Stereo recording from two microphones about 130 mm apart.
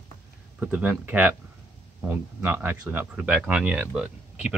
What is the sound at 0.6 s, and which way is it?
Speech, 15° right (ahead or behind).